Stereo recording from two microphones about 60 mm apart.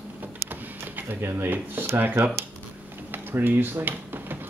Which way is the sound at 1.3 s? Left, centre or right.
Right.